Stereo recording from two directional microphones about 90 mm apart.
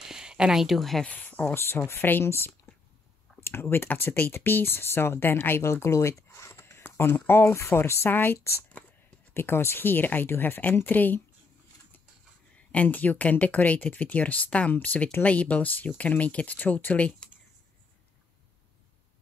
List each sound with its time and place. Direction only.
0.0 s a sound: 5° right (ahead or behind)
1.0 s speech: 20° left (ahead or behind)
1.5 s speech: 30° left (ahead or behind)
12.7 s speech: 20° left (ahead or behind)